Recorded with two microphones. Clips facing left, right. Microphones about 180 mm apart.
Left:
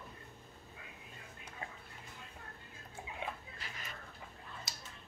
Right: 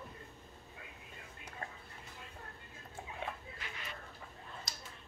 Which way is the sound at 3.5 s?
40° left (ahead or behind).